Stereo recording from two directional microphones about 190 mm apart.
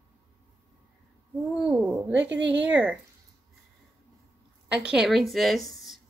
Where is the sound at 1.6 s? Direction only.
5° right (ahead or behind).